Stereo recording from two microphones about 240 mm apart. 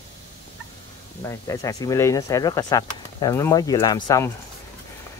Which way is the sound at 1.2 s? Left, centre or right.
Centre.